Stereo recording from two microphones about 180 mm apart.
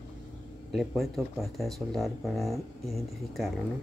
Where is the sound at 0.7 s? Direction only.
Centre (ahead or behind).